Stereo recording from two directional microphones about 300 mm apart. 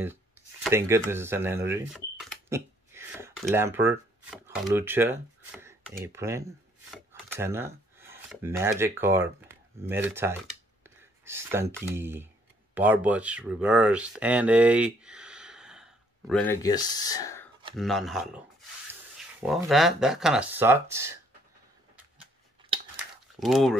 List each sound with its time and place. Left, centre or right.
0.7 s speech: centre
11.0 s a sound: centre
11.8 s speech: centre
16.6 s speech: centre
17.7 s speech: centre
22.7 s a sound: centre
23.4 s speech: centre